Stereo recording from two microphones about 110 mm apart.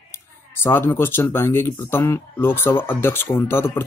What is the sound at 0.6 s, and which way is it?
Speech, 20° left (ahead or behind).